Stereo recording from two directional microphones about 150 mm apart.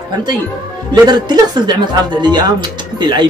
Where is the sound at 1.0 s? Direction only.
30° right (ahead or behind).